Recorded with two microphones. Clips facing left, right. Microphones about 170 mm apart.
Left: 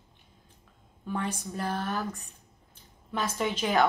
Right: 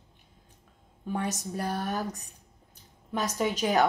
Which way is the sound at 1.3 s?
45° right (ahead or behind).